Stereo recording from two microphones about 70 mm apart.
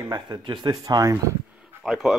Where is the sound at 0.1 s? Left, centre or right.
Right.